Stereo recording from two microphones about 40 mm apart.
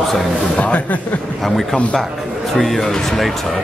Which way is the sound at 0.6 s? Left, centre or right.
Left.